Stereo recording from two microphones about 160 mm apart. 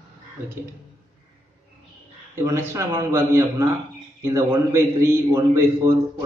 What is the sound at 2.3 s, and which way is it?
A man's voice, 15° right (ahead or behind).